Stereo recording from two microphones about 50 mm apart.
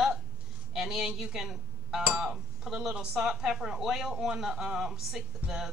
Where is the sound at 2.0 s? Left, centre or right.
Right.